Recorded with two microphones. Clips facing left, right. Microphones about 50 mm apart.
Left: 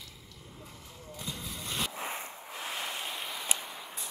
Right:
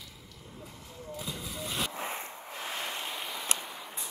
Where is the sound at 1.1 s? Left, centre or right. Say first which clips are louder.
Right 2 dB; centre.